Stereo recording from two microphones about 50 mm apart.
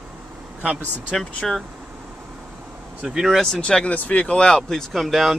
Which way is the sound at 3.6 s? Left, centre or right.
Left.